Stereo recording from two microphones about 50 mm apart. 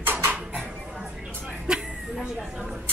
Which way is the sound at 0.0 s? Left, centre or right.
Right.